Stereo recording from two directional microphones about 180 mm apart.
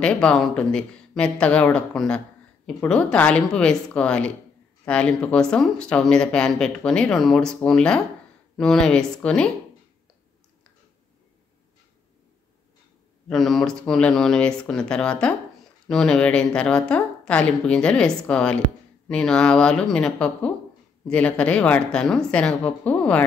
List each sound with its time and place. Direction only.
0.0 s speech: 5° left (ahead or behind)
13.3 s speech: centre (ahead or behind)